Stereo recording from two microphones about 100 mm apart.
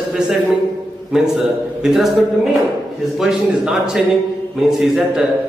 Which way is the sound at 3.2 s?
5° right (ahead or behind).